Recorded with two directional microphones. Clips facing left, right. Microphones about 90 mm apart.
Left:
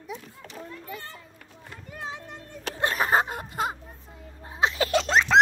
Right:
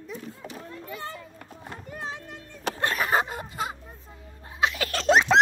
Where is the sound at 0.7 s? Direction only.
20° right (ahead or behind).